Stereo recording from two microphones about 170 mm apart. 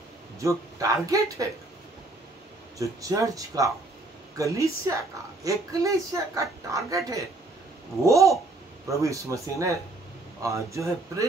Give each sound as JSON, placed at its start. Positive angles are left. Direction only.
{"t": 0.4, "sound": "a woman's voice", "side_deg": -20}
{"t": 2.8, "sound": "a woman's voice", "side_deg": -20}